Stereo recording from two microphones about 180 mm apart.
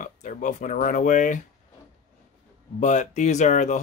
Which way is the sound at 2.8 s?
40° left (ahead or behind).